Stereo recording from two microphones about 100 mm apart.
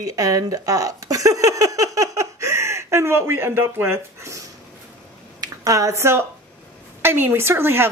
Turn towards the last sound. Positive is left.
turn(degrees=-25)  # may be behind; listen again after turning